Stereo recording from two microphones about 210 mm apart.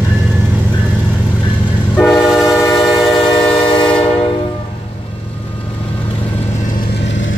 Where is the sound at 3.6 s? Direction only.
20° left (ahead or behind).